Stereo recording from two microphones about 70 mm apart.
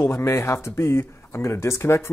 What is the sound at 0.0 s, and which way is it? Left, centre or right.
Speech, left.